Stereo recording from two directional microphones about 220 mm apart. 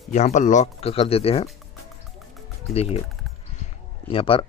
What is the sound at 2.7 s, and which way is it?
Speech, 30° left (ahead or behind).